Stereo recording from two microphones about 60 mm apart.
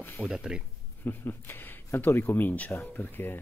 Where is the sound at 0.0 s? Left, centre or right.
Left.